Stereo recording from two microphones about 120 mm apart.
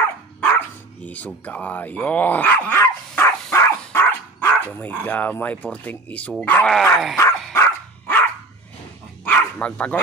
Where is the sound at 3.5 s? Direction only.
20° left (ahead or behind).